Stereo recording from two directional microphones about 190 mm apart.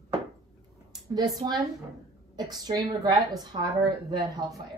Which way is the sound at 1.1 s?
20° right (ahead or behind).